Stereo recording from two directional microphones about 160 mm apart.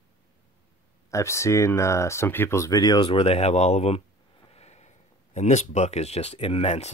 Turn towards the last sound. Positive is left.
turn(degrees=40)  # may be behind; listen again after turning